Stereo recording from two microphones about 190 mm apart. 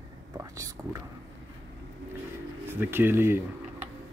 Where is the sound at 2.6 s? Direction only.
10° right (ahead or behind).